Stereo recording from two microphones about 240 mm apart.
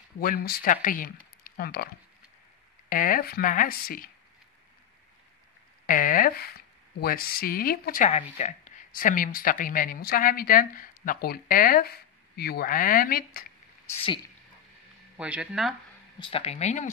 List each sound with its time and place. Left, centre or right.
0.2 s speech: left
1.4 s a sound: left
2.9 s speech: left
5.9 s speech: left
13.9 s speech: left
15.1 s speech: centre
16.2 s speech: left